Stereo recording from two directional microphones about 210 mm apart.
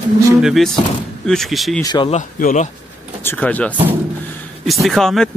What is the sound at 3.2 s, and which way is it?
Speech, 5° left (ahead or behind).